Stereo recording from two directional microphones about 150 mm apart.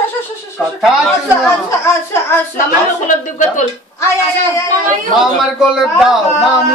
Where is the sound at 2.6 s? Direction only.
60° left (ahead or behind).